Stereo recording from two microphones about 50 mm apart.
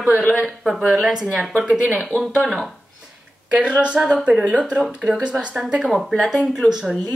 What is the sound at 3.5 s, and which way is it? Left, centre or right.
Speech, right.